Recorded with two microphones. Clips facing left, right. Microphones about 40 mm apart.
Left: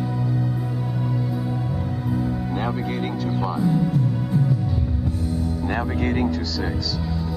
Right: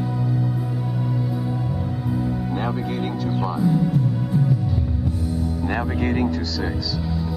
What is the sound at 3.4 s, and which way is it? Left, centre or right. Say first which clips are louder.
Music: right 1 dB; centre.